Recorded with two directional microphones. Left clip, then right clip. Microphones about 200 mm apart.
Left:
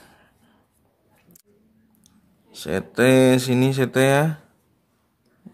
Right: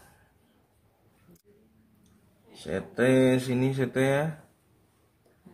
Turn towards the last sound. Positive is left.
turn(degrees=55)  # may be behind; listen again after turning